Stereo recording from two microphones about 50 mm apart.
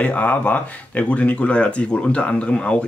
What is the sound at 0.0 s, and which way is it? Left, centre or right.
Speech, left.